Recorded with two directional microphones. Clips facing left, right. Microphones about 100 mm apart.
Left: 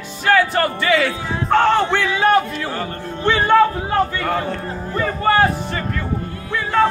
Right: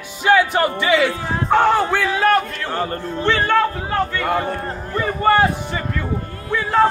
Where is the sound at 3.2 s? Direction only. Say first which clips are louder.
Left 2 dB; 15° left (ahead or behind).